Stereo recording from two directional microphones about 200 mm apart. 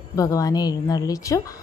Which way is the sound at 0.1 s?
15° left (ahead or behind).